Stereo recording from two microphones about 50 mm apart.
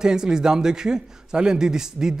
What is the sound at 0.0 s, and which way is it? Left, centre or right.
A man's voice, centre.